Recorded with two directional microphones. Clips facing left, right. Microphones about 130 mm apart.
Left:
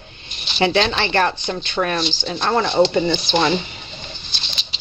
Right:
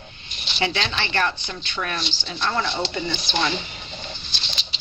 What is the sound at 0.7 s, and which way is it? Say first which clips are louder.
Speech: left 7 dB; 40° left (ahead or behind).